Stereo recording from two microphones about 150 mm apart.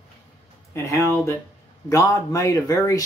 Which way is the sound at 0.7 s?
20° left (ahead or behind).